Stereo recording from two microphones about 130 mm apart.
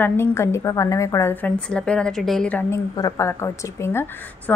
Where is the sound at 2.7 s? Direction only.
25° left (ahead or behind).